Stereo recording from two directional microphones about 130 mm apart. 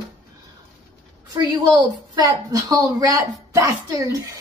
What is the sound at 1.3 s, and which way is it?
A woman's voice, 30° right (ahead or behind).